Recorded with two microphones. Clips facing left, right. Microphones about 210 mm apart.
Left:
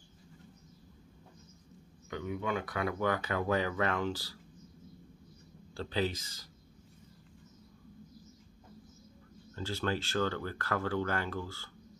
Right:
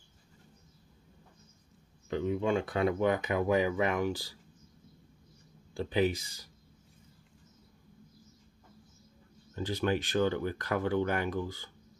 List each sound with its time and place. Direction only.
2.0 s speech: 30° right (ahead or behind)
5.8 s speech: 15° right (ahead or behind)
9.6 s speech: 15° right (ahead or behind)